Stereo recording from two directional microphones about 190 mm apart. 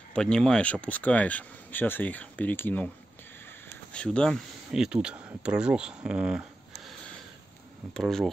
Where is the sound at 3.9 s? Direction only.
5° left (ahead or behind).